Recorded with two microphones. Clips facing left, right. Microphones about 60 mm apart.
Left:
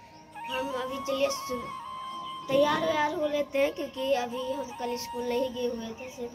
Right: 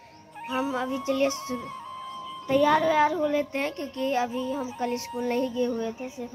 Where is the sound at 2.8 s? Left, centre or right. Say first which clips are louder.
Right 5 dB; right.